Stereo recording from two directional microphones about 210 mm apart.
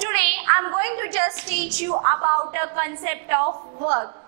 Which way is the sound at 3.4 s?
30° right (ahead or behind).